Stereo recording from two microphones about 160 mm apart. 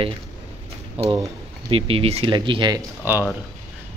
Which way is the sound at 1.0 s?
25° right (ahead or behind).